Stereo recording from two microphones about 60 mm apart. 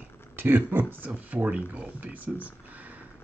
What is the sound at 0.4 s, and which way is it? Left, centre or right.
Speech, right.